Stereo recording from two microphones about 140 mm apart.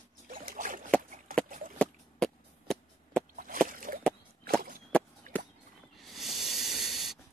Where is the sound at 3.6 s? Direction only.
80° right.